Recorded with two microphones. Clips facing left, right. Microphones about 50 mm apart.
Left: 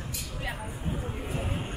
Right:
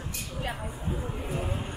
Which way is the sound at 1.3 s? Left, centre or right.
Centre.